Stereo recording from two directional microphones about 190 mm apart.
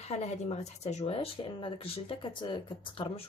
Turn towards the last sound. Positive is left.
turn(degrees=25)  # may be behind; listen again after turning